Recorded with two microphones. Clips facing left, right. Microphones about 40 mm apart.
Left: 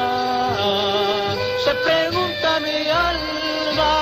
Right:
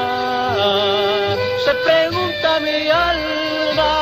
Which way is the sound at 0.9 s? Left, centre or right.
Centre.